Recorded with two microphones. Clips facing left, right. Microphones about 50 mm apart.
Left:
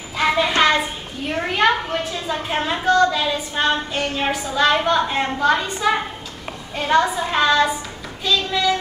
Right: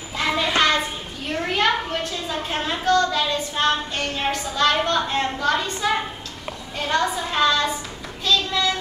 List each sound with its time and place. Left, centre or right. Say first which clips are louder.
0.2 s child singing: left 5 dB; centre
0.6 s a sound: left 2 dB; centre
1.3 s a woman's voice: left 3 dB; centre
6.8 s a woman's voice: left 5 dB; centre
8.3 s child singing: left 1 dB; centre